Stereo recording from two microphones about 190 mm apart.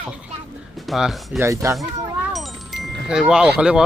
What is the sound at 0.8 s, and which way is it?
Speech, centre (ahead or behind).